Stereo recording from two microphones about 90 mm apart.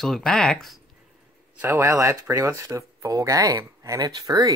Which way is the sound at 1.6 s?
30° right (ahead or behind).